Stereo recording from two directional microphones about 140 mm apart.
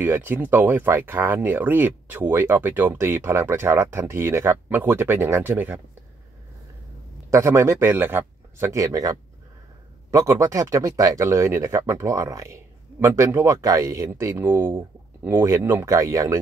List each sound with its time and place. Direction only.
0.0 s speech: 15° right (ahead or behind)
7.2 s speech: 20° right (ahead or behind)
10.1 s speech: 25° right (ahead or behind)